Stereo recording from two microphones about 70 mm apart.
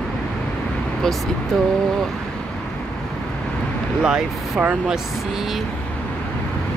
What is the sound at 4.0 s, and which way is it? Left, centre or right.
Speech, centre.